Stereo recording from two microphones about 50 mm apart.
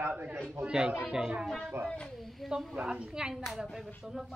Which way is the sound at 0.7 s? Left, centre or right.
Centre.